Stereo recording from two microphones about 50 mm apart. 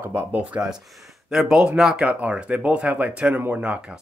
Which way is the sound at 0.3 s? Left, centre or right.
Right.